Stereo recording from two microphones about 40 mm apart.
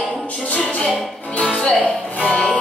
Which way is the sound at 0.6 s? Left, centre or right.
Left.